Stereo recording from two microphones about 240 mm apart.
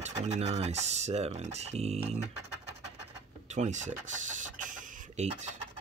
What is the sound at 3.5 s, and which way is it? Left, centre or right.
Chicken, right.